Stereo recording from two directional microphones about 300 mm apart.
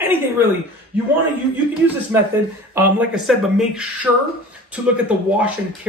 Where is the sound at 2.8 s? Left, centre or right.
Centre.